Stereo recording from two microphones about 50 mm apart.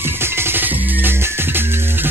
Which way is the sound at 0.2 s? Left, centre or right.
Right.